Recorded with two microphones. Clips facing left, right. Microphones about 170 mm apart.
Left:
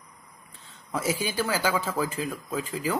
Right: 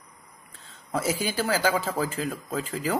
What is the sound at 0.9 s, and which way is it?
Speech, 40° right (ahead or behind).